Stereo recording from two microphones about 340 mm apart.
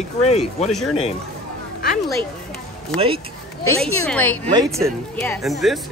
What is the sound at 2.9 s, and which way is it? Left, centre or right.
Speech, centre.